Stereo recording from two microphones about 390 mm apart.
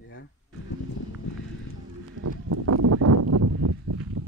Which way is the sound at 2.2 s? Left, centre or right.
Right.